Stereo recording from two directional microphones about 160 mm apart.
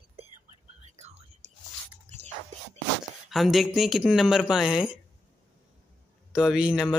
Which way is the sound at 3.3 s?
Centre (ahead or behind).